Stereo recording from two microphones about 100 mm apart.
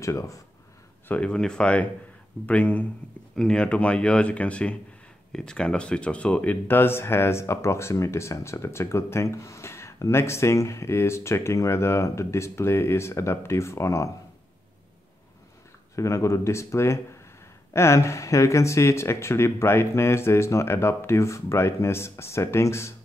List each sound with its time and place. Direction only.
0.0 s speech: 30° left (ahead or behind)
1.0 s speech: 15° left (ahead or behind); by 14.1 s 30° left (ahead or behind)
16.0 s speech: 30° left (ahead or behind)